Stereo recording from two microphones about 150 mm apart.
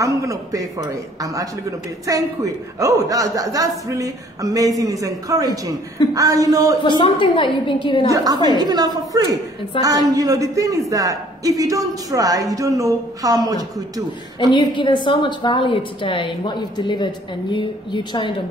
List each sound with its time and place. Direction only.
0.0 s a man's voice: 20° right (ahead or behind)
6.8 s speech: 35° left (ahead or behind)
8.1 s a man's voice: 25° right (ahead or behind)
14.5 s speech: 30° left (ahead or behind)